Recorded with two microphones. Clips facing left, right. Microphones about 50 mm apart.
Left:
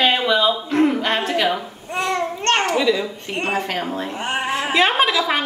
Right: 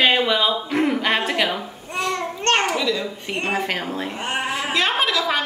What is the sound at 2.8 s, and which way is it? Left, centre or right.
Speech, centre.